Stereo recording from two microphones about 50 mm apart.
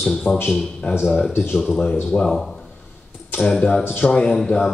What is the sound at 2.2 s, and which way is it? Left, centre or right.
Speech, centre.